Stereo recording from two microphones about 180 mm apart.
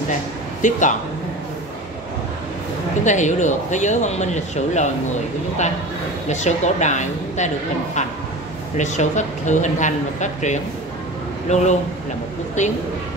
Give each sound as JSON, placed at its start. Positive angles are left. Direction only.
{"t": 0.6, "sound": "speech", "side_deg": 45}
{"t": 3.0, "sound": "a woman's voice", "side_deg": 40}
{"t": 6.2, "sound": "a woman's voice", "side_deg": 40}